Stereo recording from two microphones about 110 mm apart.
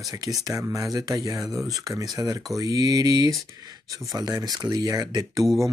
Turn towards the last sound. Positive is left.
turn(degrees=-35)  # may be behind; listen again after turning